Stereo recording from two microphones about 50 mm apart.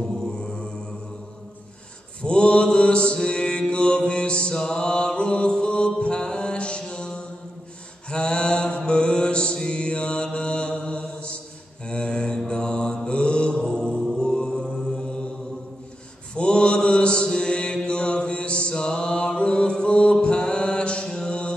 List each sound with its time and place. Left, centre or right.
0.0 s mantra: centre
2.2 s mantra: left
16.3 s mantra: left